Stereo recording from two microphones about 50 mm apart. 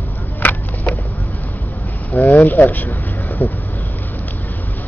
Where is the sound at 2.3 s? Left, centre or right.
Left.